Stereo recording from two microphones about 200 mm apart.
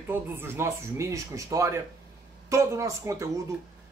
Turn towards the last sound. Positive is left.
turn(degrees=-15)  # may be behind; listen again after turning